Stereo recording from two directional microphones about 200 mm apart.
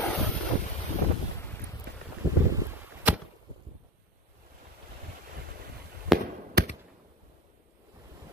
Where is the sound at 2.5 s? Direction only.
15° right (ahead or behind).